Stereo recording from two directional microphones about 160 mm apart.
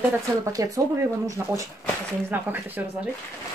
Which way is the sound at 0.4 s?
20° right (ahead or behind).